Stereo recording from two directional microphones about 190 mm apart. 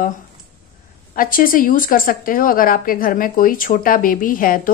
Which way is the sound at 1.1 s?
50° left (ahead or behind).